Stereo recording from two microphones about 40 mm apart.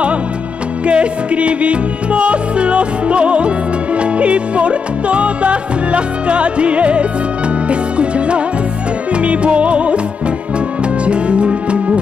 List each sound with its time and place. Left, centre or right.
0.8 s music: right
9.1 s music: right
11.1 s music: right